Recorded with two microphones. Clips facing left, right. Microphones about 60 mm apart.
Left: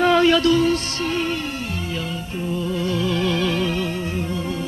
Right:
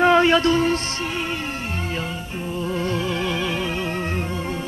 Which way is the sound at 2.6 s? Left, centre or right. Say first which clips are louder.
Even; right.